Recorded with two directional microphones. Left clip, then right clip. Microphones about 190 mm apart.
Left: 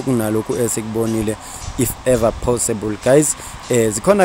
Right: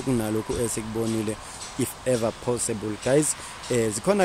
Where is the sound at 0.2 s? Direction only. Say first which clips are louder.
Left 8 dB; 15° left (ahead or behind).